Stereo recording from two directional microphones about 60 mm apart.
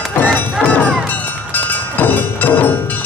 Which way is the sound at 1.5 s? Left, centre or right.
Left.